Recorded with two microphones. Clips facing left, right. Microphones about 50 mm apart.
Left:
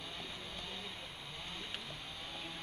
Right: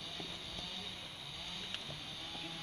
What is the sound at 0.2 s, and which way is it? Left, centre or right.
Train, centre.